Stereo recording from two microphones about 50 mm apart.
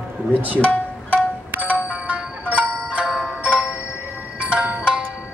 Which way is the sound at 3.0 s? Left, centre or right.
Centre.